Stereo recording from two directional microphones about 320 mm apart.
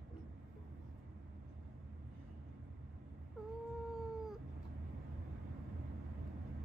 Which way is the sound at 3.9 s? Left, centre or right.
Centre.